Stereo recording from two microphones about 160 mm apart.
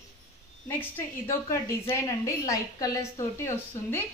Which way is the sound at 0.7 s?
15° left (ahead or behind).